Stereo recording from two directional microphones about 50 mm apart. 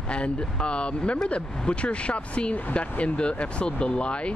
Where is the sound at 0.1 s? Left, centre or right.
Left.